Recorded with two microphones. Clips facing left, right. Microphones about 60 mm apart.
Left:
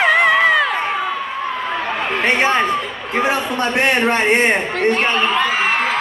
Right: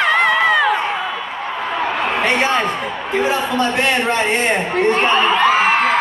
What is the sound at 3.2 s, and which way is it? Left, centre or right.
A man's voice, left.